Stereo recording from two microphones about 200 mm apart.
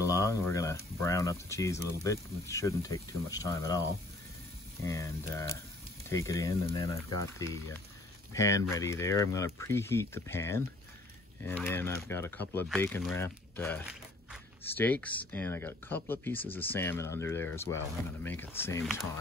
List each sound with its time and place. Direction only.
0.0 s a sound: 15° left (ahead or behind)
1.0 s speech: 15° left (ahead or behind)
4.8 s speech: 15° left (ahead or behind)